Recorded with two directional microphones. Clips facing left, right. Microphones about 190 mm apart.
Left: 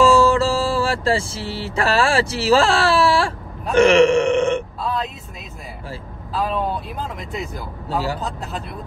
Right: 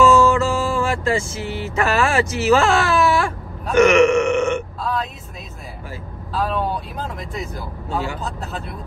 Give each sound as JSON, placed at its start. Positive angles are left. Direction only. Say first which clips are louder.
{"t": 0.0, "sound": "speech", "louder": "even", "side_deg": 35}
{"t": 3.7, "sound": "burping", "louder": "even", "side_deg": 30}
{"t": 6.3, "sound": "speech", "louder": "even", "side_deg": 0}